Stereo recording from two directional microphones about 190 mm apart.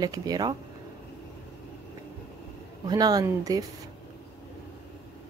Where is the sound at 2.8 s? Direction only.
20° right (ahead or behind).